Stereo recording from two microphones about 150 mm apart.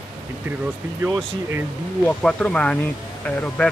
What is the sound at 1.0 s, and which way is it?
Speech, 15° right (ahead or behind).